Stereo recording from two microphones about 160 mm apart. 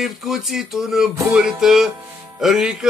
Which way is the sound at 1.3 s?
5° right (ahead or behind).